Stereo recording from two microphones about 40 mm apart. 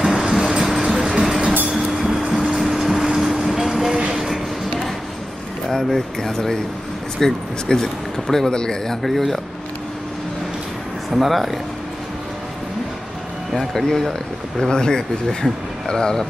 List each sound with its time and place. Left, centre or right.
0.0 s train: centre
0.8 s vehicle: centre
2.3 s train: centre
4.1 s music: centre
5.7 s speech: centre
9.0 s speech: centre
11.1 s speech: centre
13.5 s speech: centre